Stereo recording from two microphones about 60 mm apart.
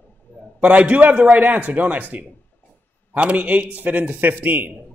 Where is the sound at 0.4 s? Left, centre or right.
Right.